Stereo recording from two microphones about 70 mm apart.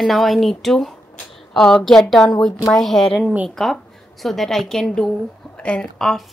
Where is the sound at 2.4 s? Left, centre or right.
Centre.